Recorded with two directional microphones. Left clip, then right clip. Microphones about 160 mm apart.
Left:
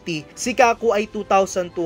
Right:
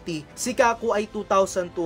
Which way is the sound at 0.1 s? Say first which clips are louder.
Left 4 dB; 20° left (ahead or behind).